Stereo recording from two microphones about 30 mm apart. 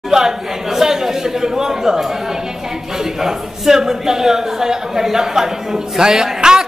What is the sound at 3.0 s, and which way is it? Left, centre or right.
A man's voice, centre.